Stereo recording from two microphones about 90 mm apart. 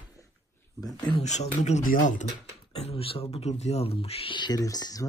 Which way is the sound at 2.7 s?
90° left.